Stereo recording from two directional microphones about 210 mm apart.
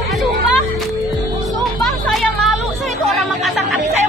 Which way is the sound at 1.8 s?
Centre (ahead or behind).